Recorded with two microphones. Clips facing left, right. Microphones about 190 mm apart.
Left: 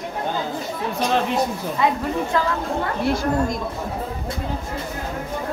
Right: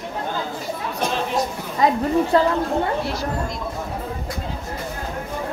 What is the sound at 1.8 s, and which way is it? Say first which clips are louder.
Speech: right 4 dB; 40° right (ahead or behind).